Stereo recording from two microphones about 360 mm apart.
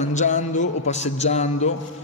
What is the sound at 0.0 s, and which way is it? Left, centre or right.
A man's voice, centre.